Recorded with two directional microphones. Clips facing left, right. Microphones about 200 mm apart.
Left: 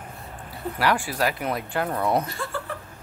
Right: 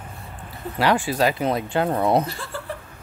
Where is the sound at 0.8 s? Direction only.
25° right (ahead or behind).